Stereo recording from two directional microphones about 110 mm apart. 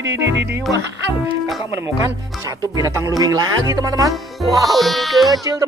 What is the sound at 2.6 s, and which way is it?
Music, 30° right (ahead or behind).